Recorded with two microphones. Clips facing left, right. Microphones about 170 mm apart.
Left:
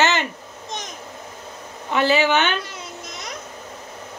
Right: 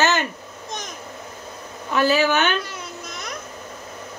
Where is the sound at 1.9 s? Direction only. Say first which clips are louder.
Even; 20° left (ahead or behind).